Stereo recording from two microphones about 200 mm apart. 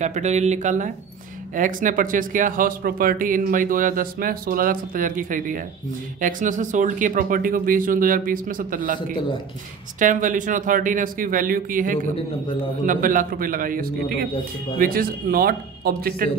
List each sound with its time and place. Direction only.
0.0 s speech: 35° right (ahead or behind)
9.9 s speech: 40° right (ahead or behind)